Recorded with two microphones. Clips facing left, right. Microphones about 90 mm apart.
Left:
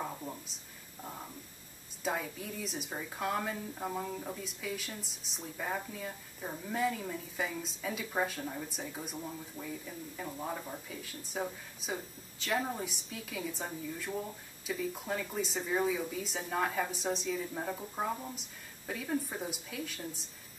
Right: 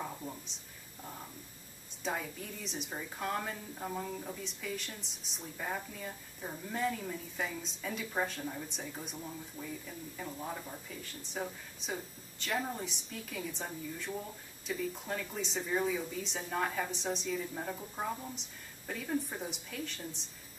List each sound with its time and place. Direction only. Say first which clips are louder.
0.0 s speech: left 2 dB; 10° left (ahead or behind)
2.0 s a woman's voice: left 2 dB; centre (ahead or behind)